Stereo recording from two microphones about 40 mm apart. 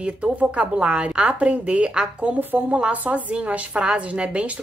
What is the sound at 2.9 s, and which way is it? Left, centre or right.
Speech, right.